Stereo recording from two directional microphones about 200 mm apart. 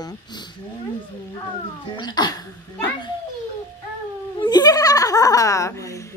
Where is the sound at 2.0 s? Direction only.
20° left (ahead or behind).